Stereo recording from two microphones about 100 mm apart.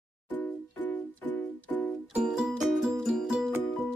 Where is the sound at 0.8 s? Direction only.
15° left (ahead or behind).